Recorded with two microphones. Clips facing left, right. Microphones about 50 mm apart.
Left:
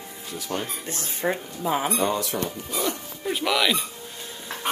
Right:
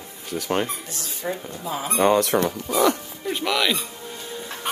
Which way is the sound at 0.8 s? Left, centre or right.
Left.